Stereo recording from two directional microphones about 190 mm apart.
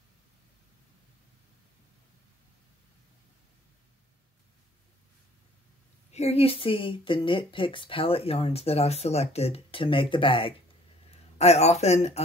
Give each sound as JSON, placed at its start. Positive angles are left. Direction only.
{"t": 6.1, "sound": "speech", "side_deg": 35}